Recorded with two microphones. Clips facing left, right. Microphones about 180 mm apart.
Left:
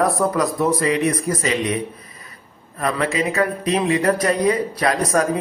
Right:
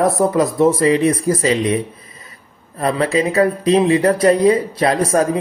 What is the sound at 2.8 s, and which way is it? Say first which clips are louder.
Speech: right 4 dB; 30° right (ahead or behind).